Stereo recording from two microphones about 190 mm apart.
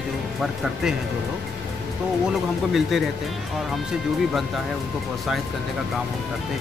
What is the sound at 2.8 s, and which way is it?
Speech, centre (ahead or behind).